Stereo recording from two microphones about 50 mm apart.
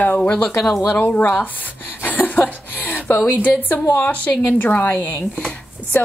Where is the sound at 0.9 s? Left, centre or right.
Left.